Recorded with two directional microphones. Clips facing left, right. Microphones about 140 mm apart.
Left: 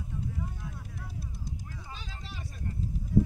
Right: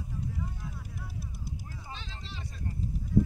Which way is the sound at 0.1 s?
5° right (ahead or behind).